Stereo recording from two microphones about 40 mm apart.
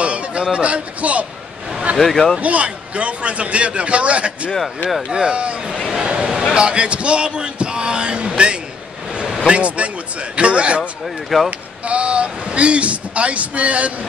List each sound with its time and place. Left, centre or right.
0.0 s speech: right
2.0 s speech: centre
2.4 s speech: right
5.9 s a sound: right
6.5 s speech: right
10.8 s speech: centre
11.8 s speech: right